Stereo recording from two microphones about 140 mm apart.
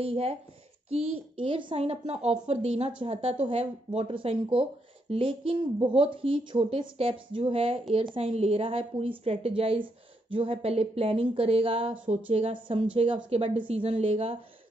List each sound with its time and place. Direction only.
0.0 s a child's voice: 45° right (ahead or behind)